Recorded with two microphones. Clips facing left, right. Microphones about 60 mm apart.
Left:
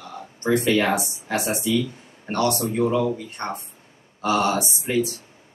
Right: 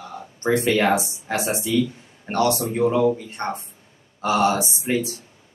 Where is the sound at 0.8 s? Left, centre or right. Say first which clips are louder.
Right 2 dB; centre.